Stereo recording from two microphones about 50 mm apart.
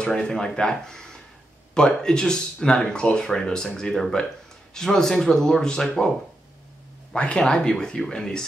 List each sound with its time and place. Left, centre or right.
0.0 s speech: centre
7.1 s speech: centre